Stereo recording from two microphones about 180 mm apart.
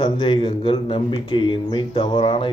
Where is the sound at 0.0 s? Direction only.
25° left (ahead or behind).